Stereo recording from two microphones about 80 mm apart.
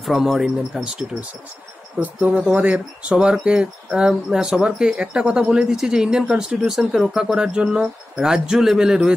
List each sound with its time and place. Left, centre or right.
0.0 s speech: centre